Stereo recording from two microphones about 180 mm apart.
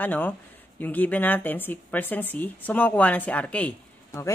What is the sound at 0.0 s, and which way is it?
Speech, 10° left (ahead or behind).